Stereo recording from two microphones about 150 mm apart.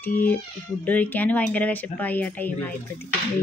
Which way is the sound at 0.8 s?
10° left (ahead or behind).